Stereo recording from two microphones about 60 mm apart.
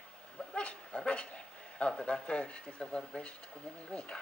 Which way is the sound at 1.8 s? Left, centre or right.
Centre.